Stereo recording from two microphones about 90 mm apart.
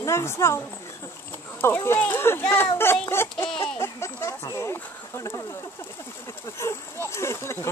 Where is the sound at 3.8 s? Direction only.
30° left (ahead or behind).